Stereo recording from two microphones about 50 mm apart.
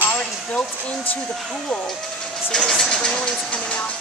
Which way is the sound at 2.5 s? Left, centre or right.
Centre.